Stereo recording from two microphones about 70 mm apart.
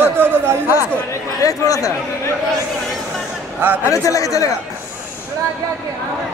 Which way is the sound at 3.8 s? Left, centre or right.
Left.